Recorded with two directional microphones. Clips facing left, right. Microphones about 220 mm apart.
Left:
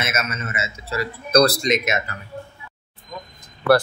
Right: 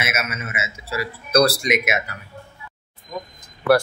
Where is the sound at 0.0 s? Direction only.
10° right (ahead or behind).